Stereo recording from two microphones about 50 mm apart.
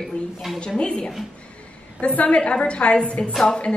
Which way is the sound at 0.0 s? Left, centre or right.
Centre.